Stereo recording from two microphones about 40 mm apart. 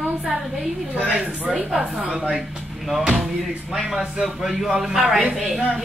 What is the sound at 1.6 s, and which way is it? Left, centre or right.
Speech, right.